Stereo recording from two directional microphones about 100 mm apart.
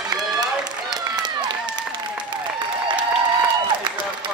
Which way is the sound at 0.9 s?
45° right (ahead or behind).